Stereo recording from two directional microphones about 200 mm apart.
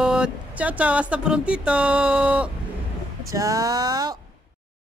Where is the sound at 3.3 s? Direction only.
15° right (ahead or behind).